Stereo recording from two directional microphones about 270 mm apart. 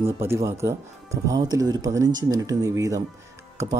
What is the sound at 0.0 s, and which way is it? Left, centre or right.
Speech, centre.